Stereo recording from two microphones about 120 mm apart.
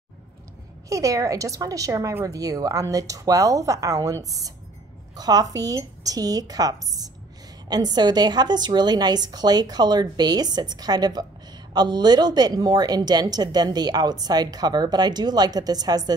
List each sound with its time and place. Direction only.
0.8 s a woman's voice: 25° right (ahead or behind)